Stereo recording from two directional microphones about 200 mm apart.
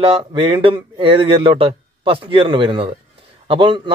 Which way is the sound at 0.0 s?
25° right (ahead or behind).